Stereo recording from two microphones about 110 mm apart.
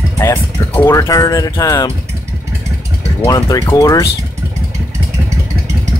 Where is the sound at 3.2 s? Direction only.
35° left (ahead or behind).